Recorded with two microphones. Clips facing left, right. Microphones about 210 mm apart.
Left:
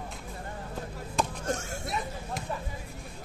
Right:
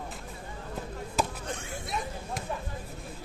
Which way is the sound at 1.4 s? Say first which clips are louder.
Left 5 dB; 45° left (ahead or behind).